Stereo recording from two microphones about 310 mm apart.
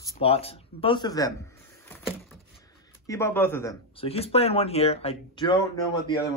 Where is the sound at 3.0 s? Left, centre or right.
Centre.